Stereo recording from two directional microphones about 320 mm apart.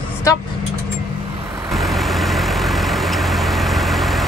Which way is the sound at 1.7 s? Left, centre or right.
Centre.